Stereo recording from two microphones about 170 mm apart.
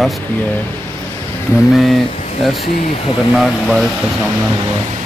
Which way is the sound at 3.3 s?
Centre (ahead or behind).